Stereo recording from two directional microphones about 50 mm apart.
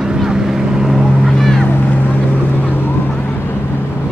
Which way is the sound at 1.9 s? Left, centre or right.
Left.